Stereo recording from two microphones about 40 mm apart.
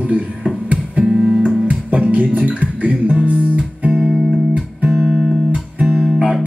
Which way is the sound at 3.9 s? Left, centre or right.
Centre.